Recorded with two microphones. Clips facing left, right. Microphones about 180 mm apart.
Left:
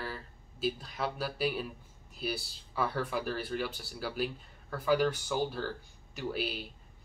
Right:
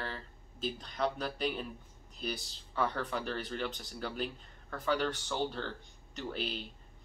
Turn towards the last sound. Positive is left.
turn(degrees=5)  # may be behind; listen again after turning